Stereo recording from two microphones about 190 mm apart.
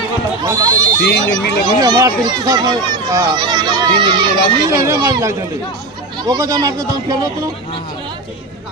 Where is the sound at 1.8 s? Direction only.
20° right (ahead or behind).